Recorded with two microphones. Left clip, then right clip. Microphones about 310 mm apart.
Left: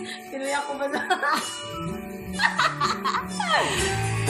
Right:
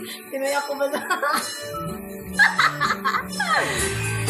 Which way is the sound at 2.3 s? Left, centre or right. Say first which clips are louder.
Right 5 dB; centre.